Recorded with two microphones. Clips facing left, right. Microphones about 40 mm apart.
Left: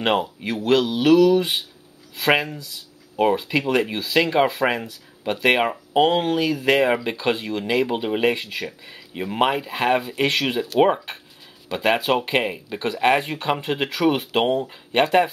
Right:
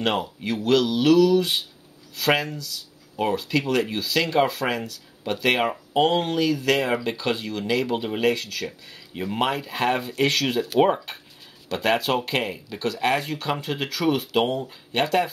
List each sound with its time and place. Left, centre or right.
0.0 s speech: centre